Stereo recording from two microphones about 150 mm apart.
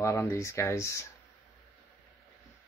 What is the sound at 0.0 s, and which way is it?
Speech, 20° left (ahead or behind).